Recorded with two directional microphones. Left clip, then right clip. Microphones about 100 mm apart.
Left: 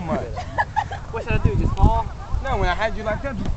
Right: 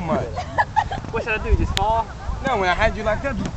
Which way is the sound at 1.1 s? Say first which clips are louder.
Right 3 dB; 35° right (ahead or behind).